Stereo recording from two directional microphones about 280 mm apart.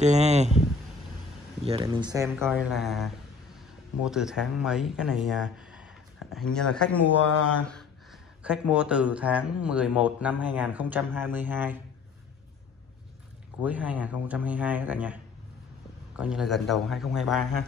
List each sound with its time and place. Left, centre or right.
0.0 s speech: right
1.7 s speech: centre
7.2 s speech: left
7.6 s speech: centre
13.6 s speech: centre
16.2 s speech: centre